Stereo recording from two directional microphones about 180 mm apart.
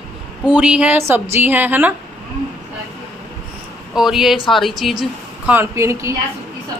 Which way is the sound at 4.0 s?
Centre (ahead or behind).